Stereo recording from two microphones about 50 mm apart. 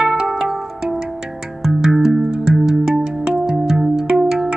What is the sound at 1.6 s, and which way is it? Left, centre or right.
Music, centre.